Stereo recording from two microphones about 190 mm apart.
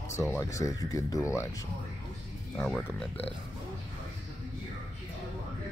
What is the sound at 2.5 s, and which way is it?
Speech, 5° left (ahead or behind).